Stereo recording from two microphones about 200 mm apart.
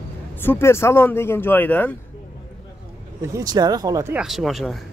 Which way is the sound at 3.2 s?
15° right (ahead or behind).